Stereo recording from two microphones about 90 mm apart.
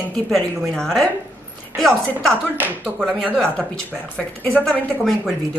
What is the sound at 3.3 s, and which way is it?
A woman's voice, 10° left (ahead or behind).